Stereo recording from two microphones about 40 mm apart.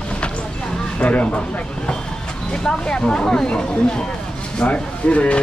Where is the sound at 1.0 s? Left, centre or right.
Left.